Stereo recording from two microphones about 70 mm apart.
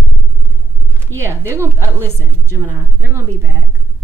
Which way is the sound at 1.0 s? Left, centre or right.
Right.